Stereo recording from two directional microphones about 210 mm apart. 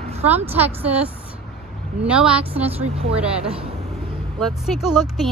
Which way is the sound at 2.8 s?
30° right (ahead or behind).